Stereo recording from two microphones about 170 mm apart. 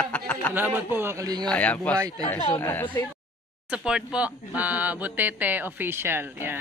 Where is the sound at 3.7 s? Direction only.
5° right (ahead or behind).